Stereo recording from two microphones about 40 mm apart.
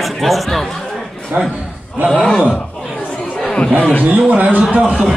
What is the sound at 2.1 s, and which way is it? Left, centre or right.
Speech, centre.